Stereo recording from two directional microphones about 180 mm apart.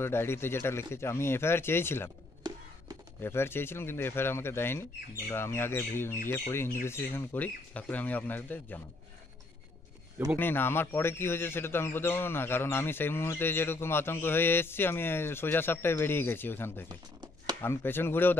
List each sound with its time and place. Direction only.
0.0 s a man's voice: 15° left (ahead or behind)
3.2 s a man's voice: 15° left (ahead or behind)
10.3 s a man's voice: 10° left (ahead or behind)
16.9 s a sound: 25° right (ahead or behind)
17.6 s a man's voice: 10° left (ahead or behind)